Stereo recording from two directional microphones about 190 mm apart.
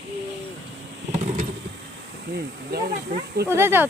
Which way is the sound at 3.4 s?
10° right (ahead or behind).